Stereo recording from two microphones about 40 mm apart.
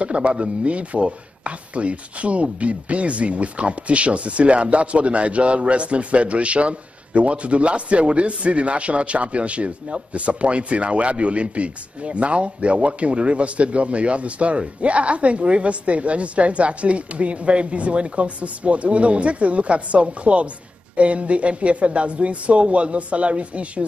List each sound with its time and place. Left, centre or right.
0.0 s a man's voice: right